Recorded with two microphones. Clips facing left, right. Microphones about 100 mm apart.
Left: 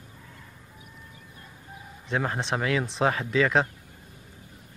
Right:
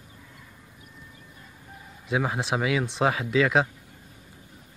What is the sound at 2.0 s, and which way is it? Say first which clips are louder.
Speech: right 2 dB; 5° right (ahead or behind).